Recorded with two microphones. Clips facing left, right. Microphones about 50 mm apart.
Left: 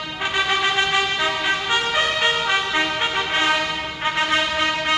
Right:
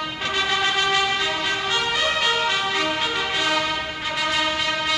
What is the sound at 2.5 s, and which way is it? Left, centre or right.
Music, left.